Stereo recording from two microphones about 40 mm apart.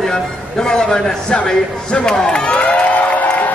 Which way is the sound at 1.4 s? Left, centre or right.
Centre.